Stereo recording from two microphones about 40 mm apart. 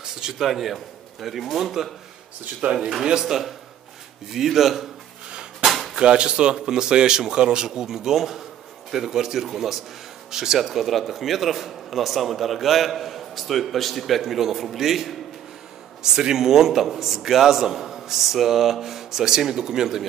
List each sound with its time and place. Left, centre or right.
0.0 s a man's voice: centre
2.6 s speech: right
3.1 s speech: centre
4.3 s speech: centre
5.3 s a sound: right
5.7 s a sound: centre
5.9 s a man's voice: right